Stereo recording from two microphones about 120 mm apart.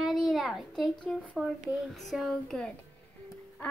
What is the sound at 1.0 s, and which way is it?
Speech, 10° left (ahead or behind).